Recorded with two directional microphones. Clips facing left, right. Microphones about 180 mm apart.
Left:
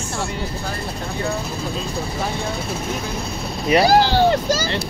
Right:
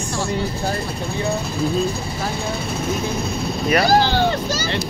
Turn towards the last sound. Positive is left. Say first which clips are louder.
# left 3 dB
turn(degrees=35)  # may be behind; listen again after turning